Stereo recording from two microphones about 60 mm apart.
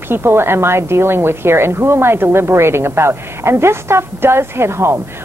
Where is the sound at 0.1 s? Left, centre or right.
Right.